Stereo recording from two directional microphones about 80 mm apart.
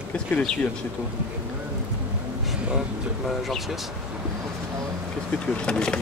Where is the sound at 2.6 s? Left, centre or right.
Centre.